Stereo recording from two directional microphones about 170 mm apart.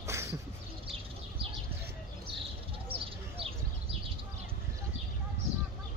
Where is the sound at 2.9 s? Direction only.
35° right (ahead or behind).